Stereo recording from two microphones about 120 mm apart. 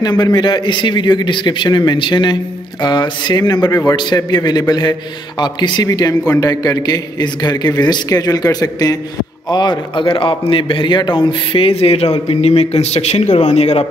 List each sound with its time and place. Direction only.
0.0 s a man's voice: 35° left (ahead or behind); by 13.8 s 65° left (ahead or behind)